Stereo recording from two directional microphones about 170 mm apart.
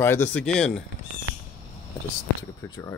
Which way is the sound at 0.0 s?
10° left (ahead or behind).